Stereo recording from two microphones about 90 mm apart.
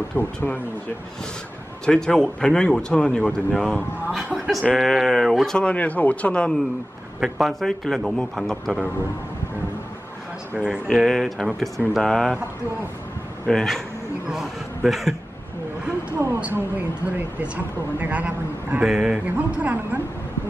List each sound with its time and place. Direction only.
0.1 s speech: 20° left (ahead or behind)
1.9 s speech: 5° left (ahead or behind)
4.1 s a man's voice: centre (ahead or behind)
7.2 s speech: centre (ahead or behind)
10.5 s speech: 10° right (ahead or behind)
13.5 s speech: 5° left (ahead or behind)
16.3 s speech: 15° right (ahead or behind)